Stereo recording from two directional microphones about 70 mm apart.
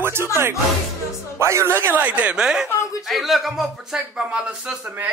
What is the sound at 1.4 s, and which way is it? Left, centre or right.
Speech, right.